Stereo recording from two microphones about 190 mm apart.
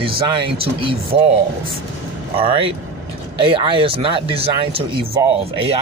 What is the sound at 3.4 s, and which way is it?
Speech, 25° right (ahead or behind).